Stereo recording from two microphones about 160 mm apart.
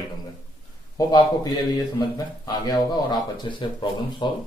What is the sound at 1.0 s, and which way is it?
Speech, 25° left (ahead or behind).